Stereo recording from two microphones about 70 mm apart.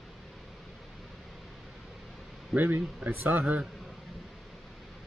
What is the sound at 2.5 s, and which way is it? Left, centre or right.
Speech, right.